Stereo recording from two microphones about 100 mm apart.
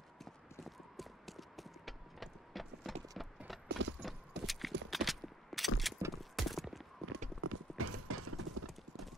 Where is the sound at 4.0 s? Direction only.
Centre (ahead or behind).